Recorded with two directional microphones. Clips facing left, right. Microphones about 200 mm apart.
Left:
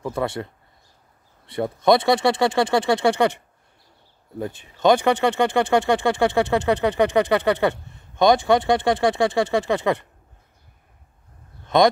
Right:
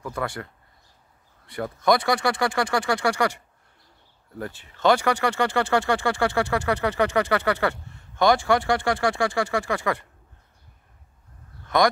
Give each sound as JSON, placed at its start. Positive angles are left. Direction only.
{"t": 0.0, "sound": "speech", "side_deg": 25}
{"t": 1.5, "sound": "speech", "side_deg": 25}
{"t": 11.6, "sound": "a sound", "side_deg": 20}